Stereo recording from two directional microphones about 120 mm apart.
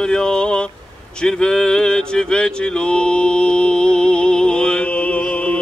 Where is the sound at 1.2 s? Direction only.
5° left (ahead or behind).